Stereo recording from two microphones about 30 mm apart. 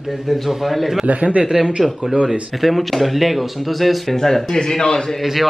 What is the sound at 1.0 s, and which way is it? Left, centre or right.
Speech, right.